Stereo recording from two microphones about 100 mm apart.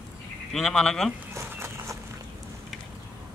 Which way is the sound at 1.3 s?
25° right (ahead or behind).